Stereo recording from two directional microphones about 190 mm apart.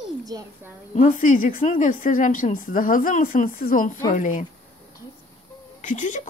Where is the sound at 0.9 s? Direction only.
45° left (ahead or behind).